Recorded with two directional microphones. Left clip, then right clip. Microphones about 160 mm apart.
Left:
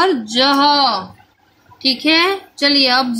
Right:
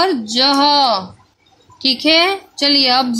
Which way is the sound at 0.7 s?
25° right (ahead or behind).